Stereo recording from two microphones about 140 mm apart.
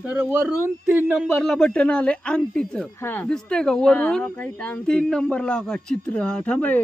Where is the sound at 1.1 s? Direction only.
Centre (ahead or behind).